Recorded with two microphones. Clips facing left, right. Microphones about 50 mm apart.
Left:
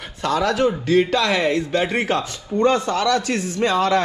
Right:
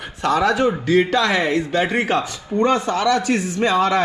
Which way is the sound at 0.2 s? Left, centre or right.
Right.